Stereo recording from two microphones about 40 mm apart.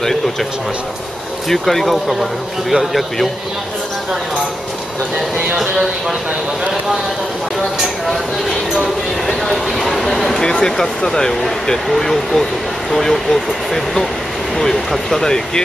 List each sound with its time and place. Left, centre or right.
1.5 s speech: centre
9.3 s a sound: centre
11.1 s speech: centre
14.6 s speech: centre